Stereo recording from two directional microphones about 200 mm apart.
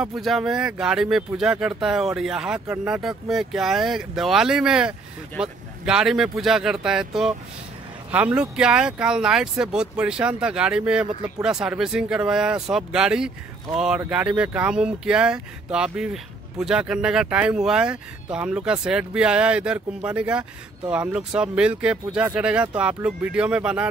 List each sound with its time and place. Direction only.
0.0 s speech: centre (ahead or behind)
8.4 s speech: 5° right (ahead or behind)